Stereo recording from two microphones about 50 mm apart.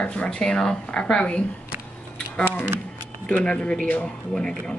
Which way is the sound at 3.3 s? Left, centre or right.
Left.